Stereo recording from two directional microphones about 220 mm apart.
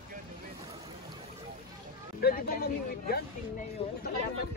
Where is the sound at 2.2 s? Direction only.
40° left (ahead or behind).